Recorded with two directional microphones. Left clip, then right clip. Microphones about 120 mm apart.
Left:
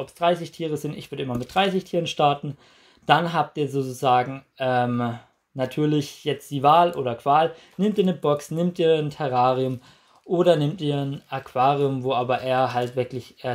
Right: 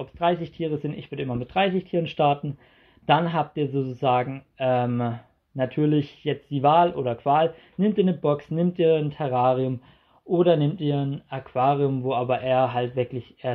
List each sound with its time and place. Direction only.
0.0 s speech: 5° left (ahead or behind)